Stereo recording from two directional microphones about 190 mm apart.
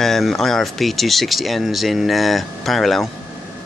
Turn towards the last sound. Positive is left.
turn(degrees=0)  # may be behind; listen again after turning